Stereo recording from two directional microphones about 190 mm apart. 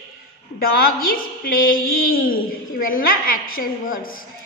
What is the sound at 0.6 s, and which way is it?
A woman's voice, 50° left (ahead or behind).